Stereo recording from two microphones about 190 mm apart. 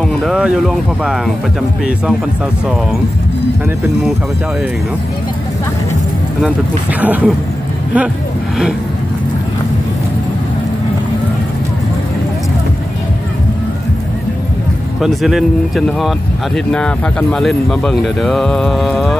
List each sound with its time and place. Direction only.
0.1 s speech: centre (ahead or behind)
7.0 s speech: 10° right (ahead or behind)
15.0 s speech: centre (ahead or behind)